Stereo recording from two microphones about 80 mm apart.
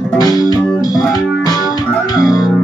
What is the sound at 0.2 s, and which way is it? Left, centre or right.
Music, left.